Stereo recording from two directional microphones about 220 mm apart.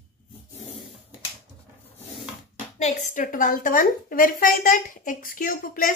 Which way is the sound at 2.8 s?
35° left (ahead or behind).